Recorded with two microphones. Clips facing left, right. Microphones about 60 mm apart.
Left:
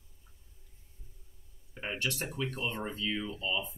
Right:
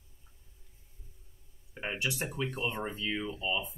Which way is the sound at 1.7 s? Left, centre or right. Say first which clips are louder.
Right 1 dB; centre.